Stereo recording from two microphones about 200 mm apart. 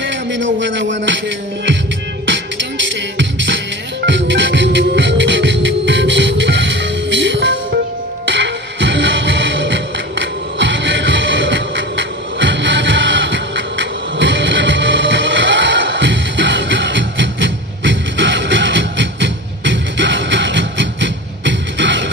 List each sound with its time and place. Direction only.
0.0 s music: 65° right (ahead or behind)
3.2 s music: 65° right (ahead or behind)